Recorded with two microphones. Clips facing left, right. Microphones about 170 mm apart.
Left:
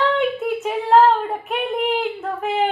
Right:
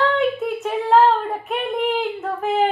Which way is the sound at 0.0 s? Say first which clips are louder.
Even; centre (ahead or behind).